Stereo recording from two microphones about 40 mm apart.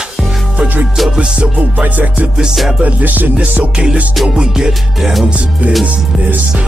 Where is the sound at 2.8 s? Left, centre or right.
Right.